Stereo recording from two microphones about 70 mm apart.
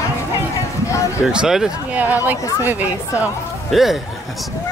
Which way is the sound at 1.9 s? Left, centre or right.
Right.